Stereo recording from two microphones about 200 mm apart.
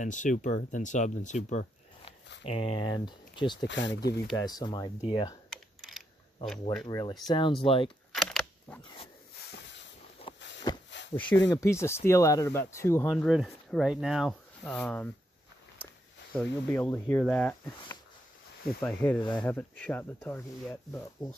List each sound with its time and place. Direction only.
0.0 s speech: 40° left (ahead or behind); by 3.6 s 20° left (ahead or behind)
3.6 s speech: 65° left (ahead or behind)
4.3 s speech: 20° left (ahead or behind)
5.5 s typing: centre (ahead or behind)
6.9 s speech: 15° left (ahead or behind)
8.1 s camera: centre (ahead or behind)
10.3 s a sound: 25° left (ahead or behind)
11.1 s speech: 10° left (ahead or behind)
13.1 s speech: centre (ahead or behind)
16.3 s speech: 5° left (ahead or behind)
21.2 s speech: 20° left (ahead or behind)